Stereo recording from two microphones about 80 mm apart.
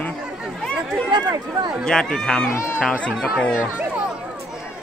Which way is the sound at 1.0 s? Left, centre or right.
Right.